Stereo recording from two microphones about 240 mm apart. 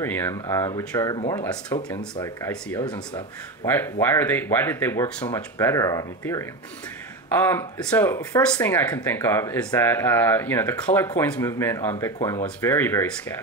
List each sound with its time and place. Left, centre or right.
0.0 s speech: centre